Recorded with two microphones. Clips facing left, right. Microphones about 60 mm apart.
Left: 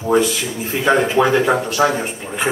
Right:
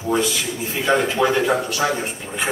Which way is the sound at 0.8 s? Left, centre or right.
Centre.